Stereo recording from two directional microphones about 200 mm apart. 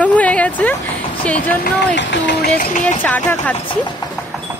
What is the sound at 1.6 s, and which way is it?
Speech, 60° left (ahead or behind).